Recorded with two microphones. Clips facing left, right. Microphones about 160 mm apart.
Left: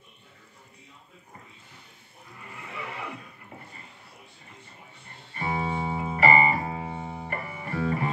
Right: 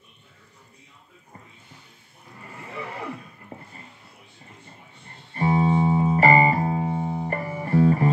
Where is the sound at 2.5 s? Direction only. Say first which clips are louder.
Right 3 dB; 40° right (ahead or behind).